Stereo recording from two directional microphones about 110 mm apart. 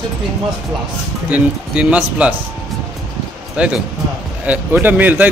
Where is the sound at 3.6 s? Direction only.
10° right (ahead or behind).